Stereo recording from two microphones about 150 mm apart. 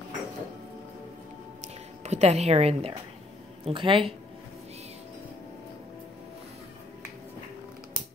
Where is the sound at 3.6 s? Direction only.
35° right (ahead or behind).